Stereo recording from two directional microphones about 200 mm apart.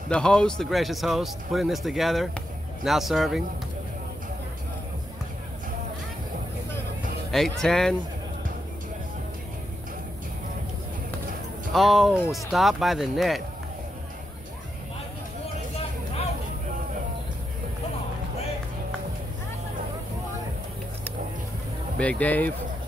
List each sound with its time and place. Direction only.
0.1 s a man's voice: 5° left (ahead or behind)
7.2 s a man's voice: centre (ahead or behind)
11.7 s a man's voice: centre (ahead or behind)
21.9 s speech: 5° left (ahead or behind)